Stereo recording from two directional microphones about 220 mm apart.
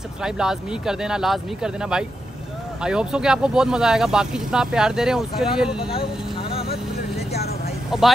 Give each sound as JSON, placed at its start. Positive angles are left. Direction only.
{"t": 0.2, "sound": "speech", "side_deg": -5}
{"t": 6.7, "sound": "vehicle", "side_deg": 45}
{"t": 7.9, "sound": "speech", "side_deg": 0}